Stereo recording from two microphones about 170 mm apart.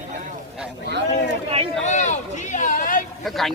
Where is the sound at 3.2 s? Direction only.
Centre (ahead or behind).